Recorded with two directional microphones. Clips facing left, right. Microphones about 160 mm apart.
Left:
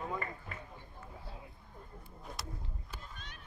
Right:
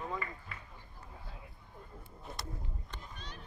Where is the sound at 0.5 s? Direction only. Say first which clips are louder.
Left 3 dB; 50° left (ahead or behind).